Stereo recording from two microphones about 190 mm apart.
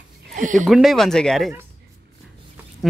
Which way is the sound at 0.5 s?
Centre (ahead or behind).